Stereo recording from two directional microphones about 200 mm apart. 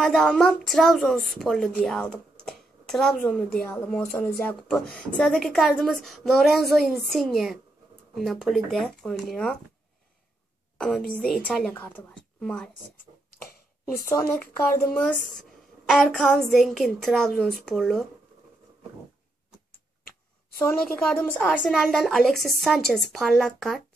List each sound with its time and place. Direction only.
0.0 s speech: 5° left (ahead or behind)
11.1 s speech: 5° left (ahead or behind)
13.3 s a sound: 50° left (ahead or behind)
14.0 s speech: 10° left (ahead or behind)
21.0 s speech: 5° left (ahead or behind)